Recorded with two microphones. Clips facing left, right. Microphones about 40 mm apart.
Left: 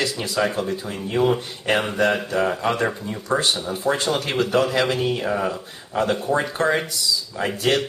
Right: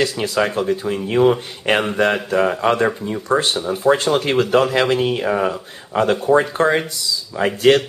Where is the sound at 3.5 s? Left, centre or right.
Centre.